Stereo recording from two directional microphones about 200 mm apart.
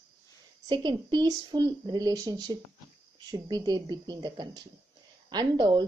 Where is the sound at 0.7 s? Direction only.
20° right (ahead or behind).